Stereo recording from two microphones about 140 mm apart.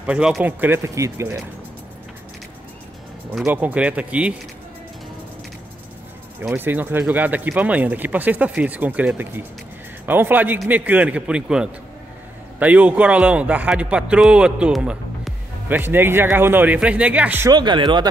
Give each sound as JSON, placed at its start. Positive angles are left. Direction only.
{"t": 0.0, "sound": "a man's voice", "side_deg": -5}
{"t": 3.4, "sound": "a man's voice", "side_deg": -10}
{"t": 6.5, "sound": "a man's voice", "side_deg": -15}
{"t": 17.5, "sound": "speech", "side_deg": -30}